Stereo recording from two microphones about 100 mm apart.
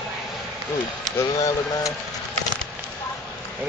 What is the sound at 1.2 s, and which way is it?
Speech, 35° left (ahead or behind).